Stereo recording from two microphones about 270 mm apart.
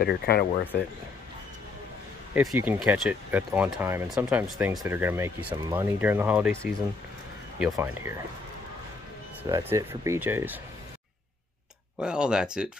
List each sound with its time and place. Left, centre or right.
0.0 s speech: left
2.3 s speech: centre
9.4 s speech: centre
12.0 s speech: centre